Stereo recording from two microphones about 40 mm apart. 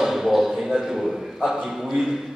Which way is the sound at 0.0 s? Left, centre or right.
Centre.